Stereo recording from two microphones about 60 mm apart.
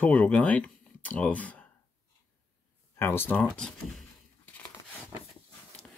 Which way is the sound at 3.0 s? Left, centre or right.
Left.